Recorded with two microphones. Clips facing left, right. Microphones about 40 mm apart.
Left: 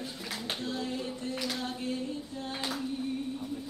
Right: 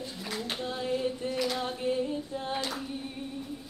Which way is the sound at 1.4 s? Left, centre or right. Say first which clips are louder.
Right 6 dB; centre.